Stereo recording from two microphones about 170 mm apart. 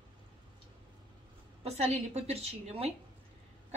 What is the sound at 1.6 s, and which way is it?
A woman's voice, 40° right (ahead or behind).